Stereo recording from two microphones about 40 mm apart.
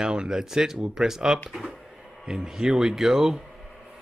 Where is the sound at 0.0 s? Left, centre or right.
Centre.